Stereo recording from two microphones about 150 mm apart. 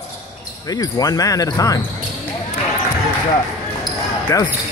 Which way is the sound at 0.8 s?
25° left (ahead or behind).